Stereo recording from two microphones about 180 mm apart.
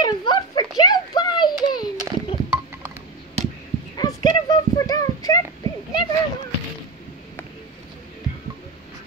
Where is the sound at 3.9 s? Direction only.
20° left (ahead or behind).